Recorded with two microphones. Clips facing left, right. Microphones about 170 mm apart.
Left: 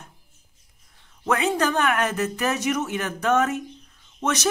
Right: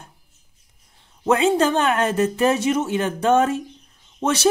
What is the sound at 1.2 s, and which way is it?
Speech, 25° right (ahead or behind).